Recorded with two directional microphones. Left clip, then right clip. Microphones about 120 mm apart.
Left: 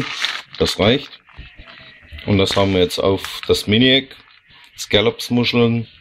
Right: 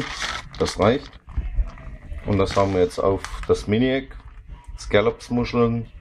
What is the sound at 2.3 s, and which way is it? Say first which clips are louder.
Speech: left 4 dB; 45° left (ahead or behind).